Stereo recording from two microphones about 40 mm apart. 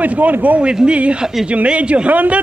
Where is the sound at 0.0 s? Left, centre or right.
Right.